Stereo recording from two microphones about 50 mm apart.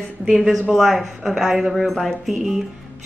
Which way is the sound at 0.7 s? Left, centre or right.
Centre.